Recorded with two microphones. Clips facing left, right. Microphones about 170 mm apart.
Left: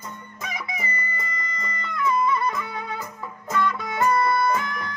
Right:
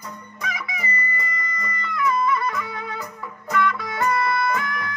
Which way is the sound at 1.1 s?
25° left (ahead or behind).